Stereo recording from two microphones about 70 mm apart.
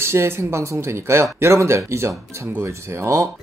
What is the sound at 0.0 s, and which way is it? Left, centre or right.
Speech, right.